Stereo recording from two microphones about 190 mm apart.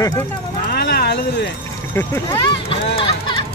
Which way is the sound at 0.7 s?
55° left (ahead or behind).